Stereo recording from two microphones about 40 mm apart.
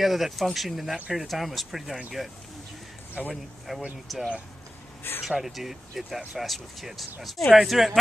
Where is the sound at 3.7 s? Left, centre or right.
Centre.